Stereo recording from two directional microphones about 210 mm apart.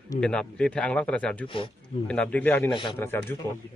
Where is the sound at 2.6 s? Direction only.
25° left (ahead or behind).